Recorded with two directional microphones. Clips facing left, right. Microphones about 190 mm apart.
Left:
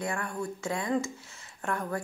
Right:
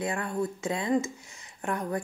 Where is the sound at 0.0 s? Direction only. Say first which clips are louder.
Right 3 dB; 20° right (ahead or behind).